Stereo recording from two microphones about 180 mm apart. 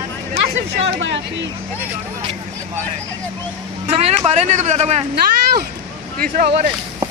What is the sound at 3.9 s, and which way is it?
Speech, 35° right (ahead or behind).